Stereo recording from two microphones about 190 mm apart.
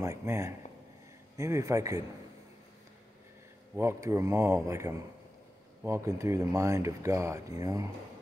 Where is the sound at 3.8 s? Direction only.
15° right (ahead or behind).